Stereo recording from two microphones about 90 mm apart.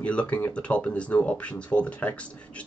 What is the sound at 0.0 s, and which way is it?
Speech, 15° left (ahead or behind).